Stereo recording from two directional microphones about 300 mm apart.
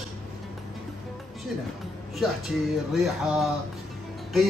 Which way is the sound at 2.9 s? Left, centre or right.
Centre.